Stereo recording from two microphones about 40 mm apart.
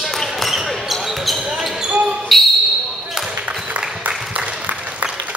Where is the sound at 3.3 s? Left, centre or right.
Right.